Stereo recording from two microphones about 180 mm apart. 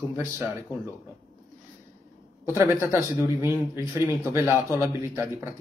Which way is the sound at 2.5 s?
15° right (ahead or behind).